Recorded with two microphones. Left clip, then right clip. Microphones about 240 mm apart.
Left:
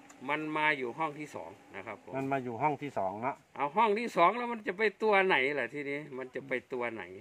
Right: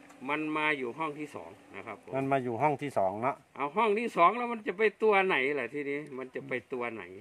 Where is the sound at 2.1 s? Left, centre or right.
Right.